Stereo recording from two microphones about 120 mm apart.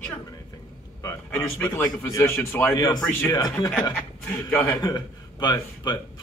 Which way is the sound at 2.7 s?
35° left (ahead or behind).